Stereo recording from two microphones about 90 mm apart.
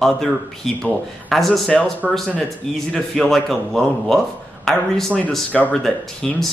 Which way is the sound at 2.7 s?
5° left (ahead or behind).